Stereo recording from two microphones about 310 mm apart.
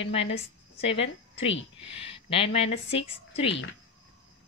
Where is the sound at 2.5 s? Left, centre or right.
Centre.